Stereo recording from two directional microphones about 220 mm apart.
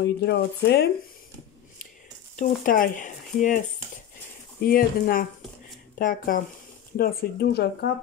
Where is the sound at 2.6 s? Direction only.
40° left (ahead or behind).